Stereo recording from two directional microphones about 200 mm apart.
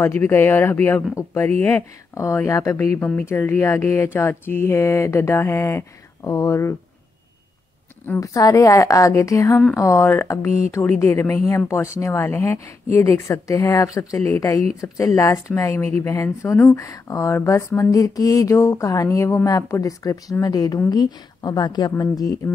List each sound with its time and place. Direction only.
0.0 s speech: 10° left (ahead or behind)
8.1 s speech: 15° left (ahead or behind)